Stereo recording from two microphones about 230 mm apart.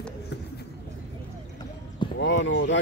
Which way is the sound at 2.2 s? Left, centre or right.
Left.